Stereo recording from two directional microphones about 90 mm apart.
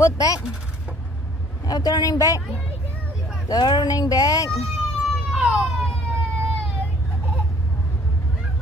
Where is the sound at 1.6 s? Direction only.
50° left (ahead or behind).